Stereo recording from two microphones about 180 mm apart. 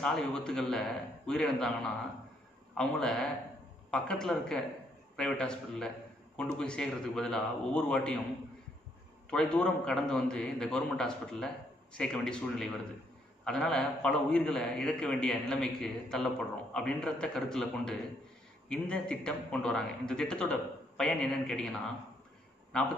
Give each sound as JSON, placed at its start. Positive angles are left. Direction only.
{"t": 0.0, "sound": "a man's voice", "side_deg": 5}
{"t": 9.3, "sound": "a man's voice", "side_deg": 5}